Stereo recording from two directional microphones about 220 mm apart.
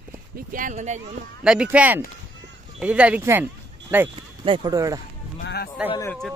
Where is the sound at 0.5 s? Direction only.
35° right (ahead or behind).